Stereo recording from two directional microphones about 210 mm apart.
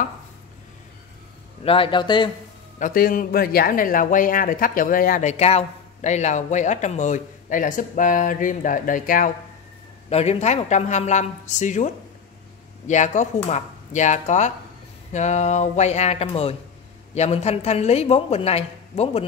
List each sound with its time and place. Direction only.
1.6 s a man's voice: 25° left (ahead or behind)
2.8 s speech: 45° left (ahead or behind)
10.0 s a man's voice: 30° left (ahead or behind)